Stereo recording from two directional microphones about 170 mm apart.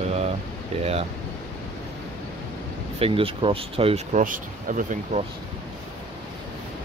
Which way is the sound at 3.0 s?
35° right (ahead or behind).